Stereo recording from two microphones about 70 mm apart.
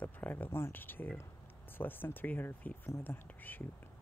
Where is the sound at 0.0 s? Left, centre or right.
Left.